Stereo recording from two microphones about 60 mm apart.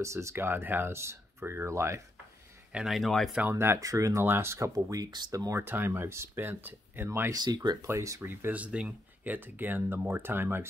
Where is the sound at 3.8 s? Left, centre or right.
Right.